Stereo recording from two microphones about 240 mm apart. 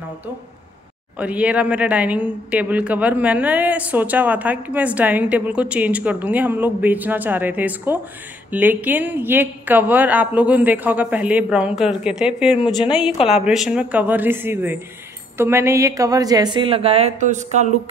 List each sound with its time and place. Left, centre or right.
1.1 s a woman's voice: centre; by 17.6 s right